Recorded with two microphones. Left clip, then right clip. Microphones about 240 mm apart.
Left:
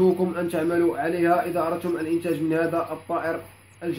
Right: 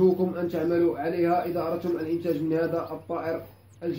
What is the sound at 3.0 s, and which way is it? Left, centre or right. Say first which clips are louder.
Speech: left 3 dB; left.